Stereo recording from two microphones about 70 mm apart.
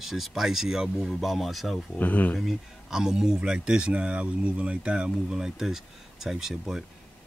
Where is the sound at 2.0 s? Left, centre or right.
Left.